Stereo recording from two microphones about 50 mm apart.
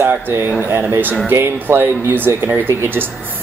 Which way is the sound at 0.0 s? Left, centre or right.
Right.